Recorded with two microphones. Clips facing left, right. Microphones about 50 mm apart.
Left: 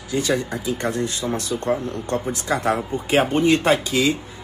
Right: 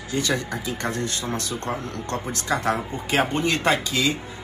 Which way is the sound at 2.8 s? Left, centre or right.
Right.